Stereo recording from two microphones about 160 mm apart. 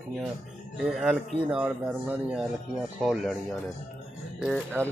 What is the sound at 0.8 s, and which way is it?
Speech, centre (ahead or behind).